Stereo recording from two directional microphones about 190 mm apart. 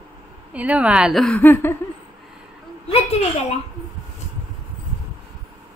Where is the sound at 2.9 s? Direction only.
30° left (ahead or behind).